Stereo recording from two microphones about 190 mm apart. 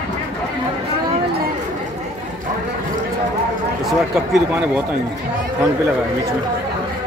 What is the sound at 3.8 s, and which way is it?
Speech, centre (ahead or behind).